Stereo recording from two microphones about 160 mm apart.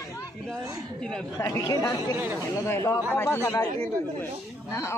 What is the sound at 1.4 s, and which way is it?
Speech, 20° left (ahead or behind).